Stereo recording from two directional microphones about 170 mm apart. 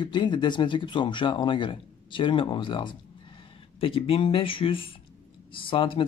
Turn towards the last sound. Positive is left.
turn(degrees=30)  # may be behind; listen again after turning